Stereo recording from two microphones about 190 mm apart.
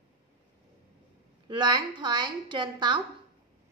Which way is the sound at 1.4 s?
25° right (ahead or behind).